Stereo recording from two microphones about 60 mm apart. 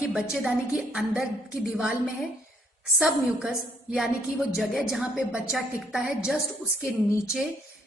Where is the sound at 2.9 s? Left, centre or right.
Centre.